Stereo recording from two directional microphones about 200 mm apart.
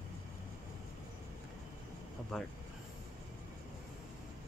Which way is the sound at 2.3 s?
Centre (ahead or behind).